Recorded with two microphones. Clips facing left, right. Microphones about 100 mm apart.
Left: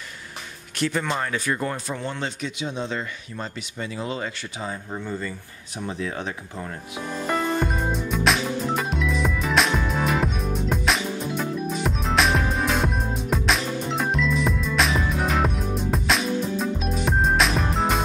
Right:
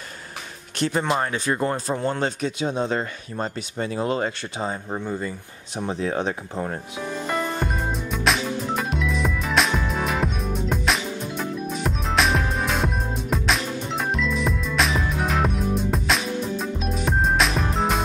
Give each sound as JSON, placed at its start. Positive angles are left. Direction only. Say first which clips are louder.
{"t": 0.7, "sound": "speech", "louder": "right 3 dB", "side_deg": -30}
{"t": 4.6, "sound": "speech", "louder": "right 3 dB", "side_deg": -25}
{"t": 7.6, "sound": "music", "louder": "left 1 dB", "side_deg": 0}